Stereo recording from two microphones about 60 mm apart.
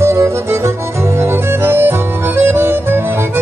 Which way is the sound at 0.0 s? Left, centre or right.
Right.